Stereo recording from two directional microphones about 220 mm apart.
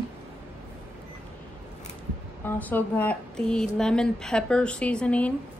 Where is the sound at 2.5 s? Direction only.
10° left (ahead or behind).